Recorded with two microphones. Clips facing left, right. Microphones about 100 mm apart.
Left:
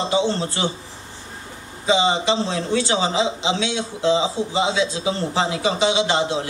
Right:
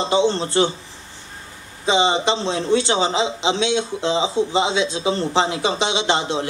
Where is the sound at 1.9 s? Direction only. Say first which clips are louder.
Right 1 dB; 25° right (ahead or behind).